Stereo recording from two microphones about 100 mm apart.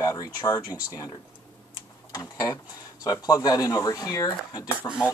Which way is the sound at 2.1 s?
40° left (ahead or behind).